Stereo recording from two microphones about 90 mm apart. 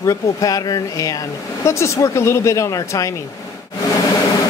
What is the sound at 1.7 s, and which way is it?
Speech, 30° left (ahead or behind).